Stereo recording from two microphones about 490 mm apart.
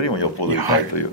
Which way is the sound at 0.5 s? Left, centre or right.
Right.